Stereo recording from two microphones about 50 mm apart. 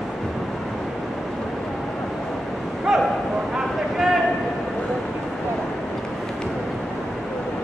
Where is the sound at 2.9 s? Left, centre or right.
Centre.